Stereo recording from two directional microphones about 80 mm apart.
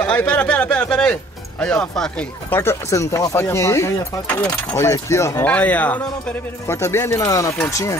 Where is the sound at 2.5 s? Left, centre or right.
Left.